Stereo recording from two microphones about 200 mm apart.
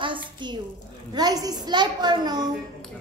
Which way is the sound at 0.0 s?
25° right (ahead or behind).